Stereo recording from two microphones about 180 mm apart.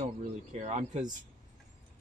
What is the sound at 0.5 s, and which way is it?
Speech, 40° right (ahead or behind).